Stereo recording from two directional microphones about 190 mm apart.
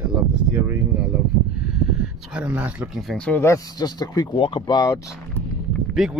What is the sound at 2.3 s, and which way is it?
Speech, 10° right (ahead or behind).